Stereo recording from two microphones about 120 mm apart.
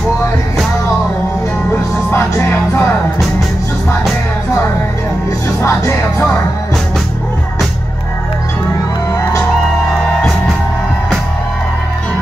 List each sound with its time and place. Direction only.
2.0 s music: 20° left (ahead or behind)
5.6 s music: 25° left (ahead or behind)